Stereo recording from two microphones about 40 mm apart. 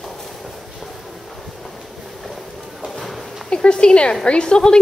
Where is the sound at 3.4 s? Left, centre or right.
Left.